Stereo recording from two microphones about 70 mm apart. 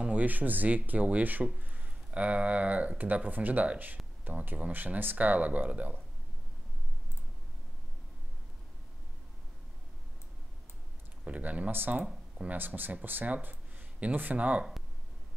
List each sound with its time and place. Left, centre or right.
0.0 s speech: right
11.2 s speech: centre